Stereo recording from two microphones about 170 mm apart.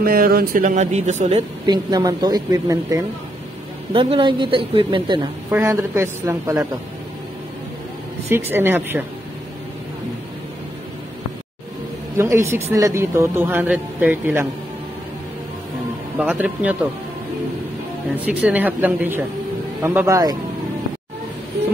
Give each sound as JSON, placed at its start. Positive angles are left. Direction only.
{"t": 0.0, "sound": "speech", "side_deg": -60}
{"t": 1.7, "sound": "speech", "side_deg": -25}
{"t": 3.9, "sound": "a woman's voice", "side_deg": -30}
{"t": 5.5, "sound": "a woman's voice", "side_deg": -15}
{"t": 8.3, "sound": "a woman's voice", "side_deg": -15}
{"t": 12.2, "sound": "a woman's voice", "side_deg": -15}
{"t": 16.2, "sound": "a woman's voice", "side_deg": -10}
{"t": 18.1, "sound": "a woman's voice", "side_deg": -10}